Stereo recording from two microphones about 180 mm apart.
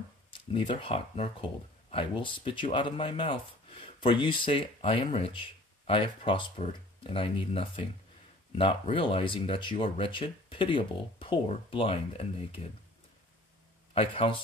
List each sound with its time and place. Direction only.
0.3 s speech: 30° left (ahead or behind)
13.9 s speech: 30° left (ahead or behind)